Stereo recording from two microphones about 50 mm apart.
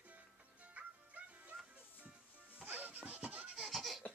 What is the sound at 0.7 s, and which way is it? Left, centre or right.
Music, right.